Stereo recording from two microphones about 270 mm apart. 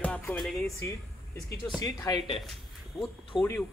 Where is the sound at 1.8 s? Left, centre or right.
Centre.